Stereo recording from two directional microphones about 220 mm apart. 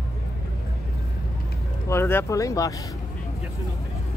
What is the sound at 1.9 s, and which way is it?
Speech, 10° left (ahead or behind).